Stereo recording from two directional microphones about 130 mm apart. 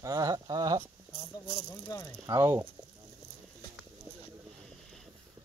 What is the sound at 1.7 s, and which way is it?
Speech, 25° left (ahead or behind).